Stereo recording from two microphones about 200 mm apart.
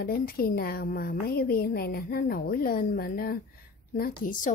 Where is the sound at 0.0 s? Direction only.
50° left (ahead or behind).